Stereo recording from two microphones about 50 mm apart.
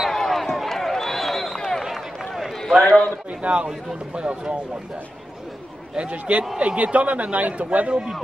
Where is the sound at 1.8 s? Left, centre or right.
Centre.